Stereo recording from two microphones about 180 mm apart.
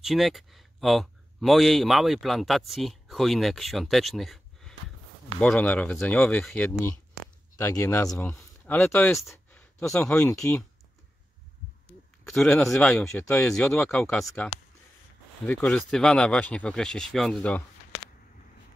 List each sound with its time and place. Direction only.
0.0 s speech: centre (ahead or behind)
12.3 s speech: 5° left (ahead or behind)